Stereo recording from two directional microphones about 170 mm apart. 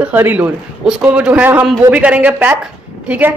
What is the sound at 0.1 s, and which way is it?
A man's voice, 10° right (ahead or behind).